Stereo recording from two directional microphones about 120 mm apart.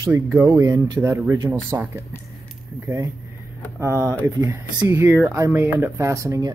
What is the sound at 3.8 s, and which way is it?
Speech, 25° right (ahead or behind).